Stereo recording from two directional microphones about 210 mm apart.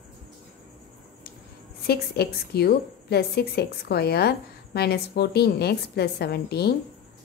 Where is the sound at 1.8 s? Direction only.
50° left (ahead or behind).